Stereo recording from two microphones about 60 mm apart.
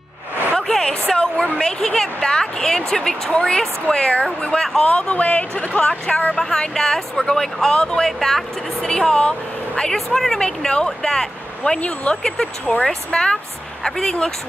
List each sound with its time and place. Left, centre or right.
0.6 s a woman's voice: centre
11.8 s speech: left
12.2 s speech: centre